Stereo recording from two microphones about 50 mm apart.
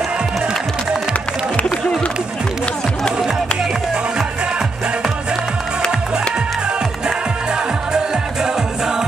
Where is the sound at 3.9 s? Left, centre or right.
Centre.